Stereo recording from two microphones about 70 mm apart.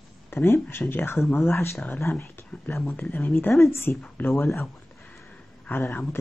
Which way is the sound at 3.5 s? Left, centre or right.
Left.